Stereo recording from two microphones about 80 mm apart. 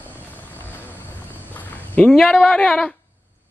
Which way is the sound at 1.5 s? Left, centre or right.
Left.